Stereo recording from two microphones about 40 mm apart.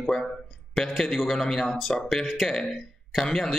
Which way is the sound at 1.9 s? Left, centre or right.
Centre.